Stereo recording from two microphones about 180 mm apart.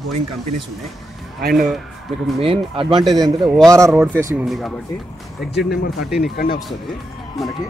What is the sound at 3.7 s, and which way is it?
Speech, 15° right (ahead or behind).